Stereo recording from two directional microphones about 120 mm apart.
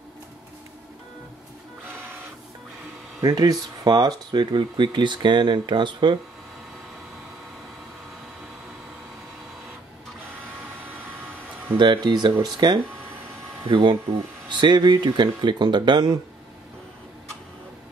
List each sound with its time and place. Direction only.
3.2 s speech: 30° right (ahead or behind)
11.7 s speech: 40° right (ahead or behind)
13.7 s speech: 40° right (ahead or behind)